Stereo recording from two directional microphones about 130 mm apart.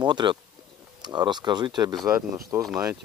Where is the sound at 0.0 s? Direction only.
35° right (ahead or behind).